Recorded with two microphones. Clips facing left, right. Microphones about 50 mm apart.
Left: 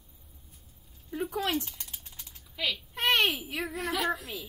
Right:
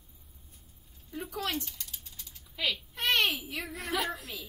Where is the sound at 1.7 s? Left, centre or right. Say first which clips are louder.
Left 1 dB; left.